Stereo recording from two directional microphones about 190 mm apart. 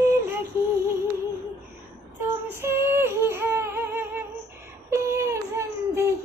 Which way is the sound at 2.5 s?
10° right (ahead or behind).